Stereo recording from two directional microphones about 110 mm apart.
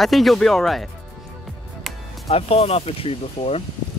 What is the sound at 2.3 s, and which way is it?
Speech, 65° left (ahead or behind).